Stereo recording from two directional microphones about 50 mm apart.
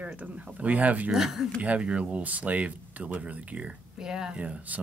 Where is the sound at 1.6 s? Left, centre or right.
Right.